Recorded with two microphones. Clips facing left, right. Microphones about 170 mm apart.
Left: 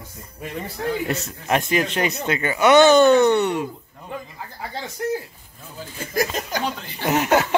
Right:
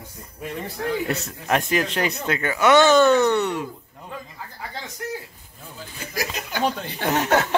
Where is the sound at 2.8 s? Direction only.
30° left (ahead or behind).